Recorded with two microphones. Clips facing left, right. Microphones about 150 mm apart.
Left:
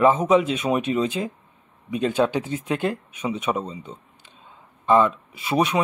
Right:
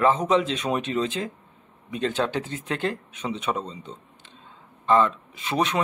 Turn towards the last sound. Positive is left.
turn(degrees=10)  # may be behind; listen again after turning